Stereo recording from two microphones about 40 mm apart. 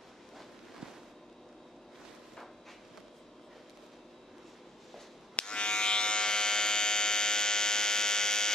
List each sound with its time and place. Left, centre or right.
5.4 s electric shaver: left